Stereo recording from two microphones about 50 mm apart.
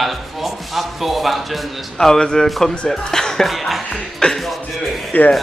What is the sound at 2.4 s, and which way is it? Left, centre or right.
A man's voice, centre.